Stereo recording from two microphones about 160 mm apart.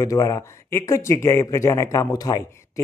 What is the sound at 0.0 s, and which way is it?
A man's voice, 20° left (ahead or behind).